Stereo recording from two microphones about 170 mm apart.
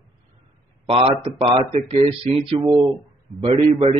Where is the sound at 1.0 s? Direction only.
30° right (ahead or behind).